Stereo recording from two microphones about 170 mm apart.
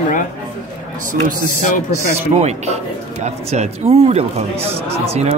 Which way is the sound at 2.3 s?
40° right (ahead or behind).